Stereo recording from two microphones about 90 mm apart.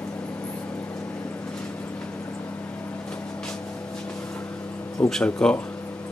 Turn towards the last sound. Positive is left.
turn(degrees=10)  # may be behind; listen again after turning